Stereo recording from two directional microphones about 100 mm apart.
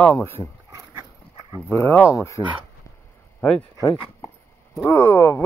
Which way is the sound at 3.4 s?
15° left (ahead or behind).